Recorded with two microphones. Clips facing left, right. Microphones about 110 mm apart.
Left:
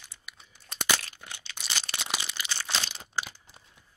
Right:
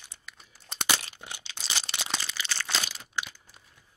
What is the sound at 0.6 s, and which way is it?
Crumpling, 25° right (ahead or behind).